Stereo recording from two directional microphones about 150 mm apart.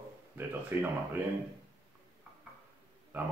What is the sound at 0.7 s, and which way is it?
Speech, 15° right (ahead or behind).